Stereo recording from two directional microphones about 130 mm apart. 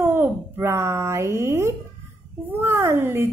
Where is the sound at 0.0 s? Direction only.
15° right (ahead or behind).